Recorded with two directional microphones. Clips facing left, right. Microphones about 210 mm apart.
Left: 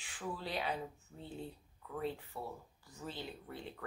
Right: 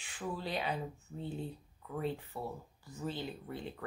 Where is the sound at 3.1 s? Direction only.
Centre (ahead or behind).